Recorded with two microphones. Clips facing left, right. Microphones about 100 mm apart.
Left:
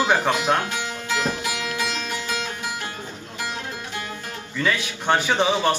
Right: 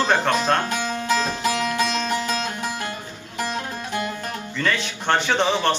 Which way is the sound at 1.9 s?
60° right (ahead or behind).